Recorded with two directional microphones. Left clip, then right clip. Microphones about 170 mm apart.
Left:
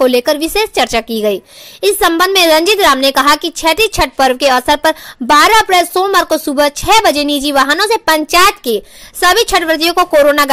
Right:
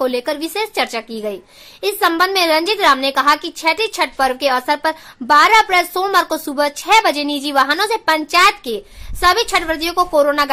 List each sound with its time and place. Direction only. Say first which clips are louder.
0.0 s a woman's voice: left 8 dB; 35° left (ahead or behind)